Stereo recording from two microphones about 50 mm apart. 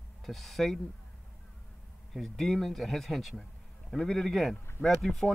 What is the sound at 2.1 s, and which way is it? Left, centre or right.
A man's voice, centre.